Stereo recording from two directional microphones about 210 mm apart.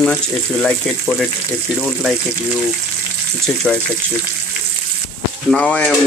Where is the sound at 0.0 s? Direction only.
5° left (ahead or behind).